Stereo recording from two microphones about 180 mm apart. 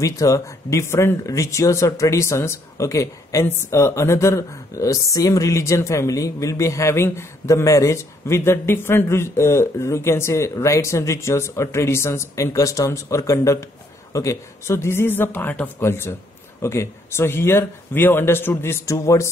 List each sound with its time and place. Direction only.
0.0 s speech: 20° left (ahead or behind)